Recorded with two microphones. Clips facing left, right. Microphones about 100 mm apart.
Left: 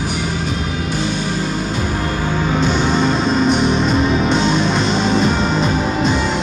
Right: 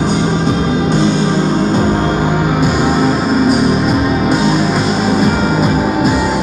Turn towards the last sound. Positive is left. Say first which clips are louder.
# right 4 dB
turn(degrees=-5)  # may be behind; listen again after turning